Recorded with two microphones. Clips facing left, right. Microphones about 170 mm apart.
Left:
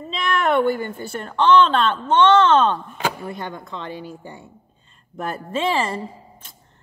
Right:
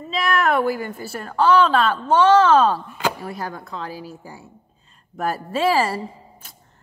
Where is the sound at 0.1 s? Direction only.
5° right (ahead or behind).